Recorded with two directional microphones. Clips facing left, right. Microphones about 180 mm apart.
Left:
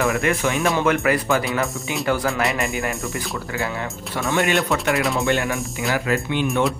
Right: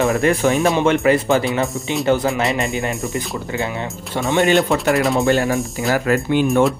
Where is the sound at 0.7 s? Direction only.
25° right (ahead or behind).